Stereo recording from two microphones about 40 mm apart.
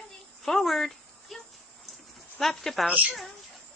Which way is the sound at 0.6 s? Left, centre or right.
Centre.